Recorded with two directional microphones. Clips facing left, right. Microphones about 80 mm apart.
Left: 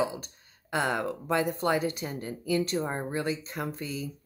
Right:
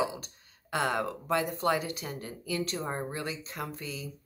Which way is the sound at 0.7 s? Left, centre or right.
Left.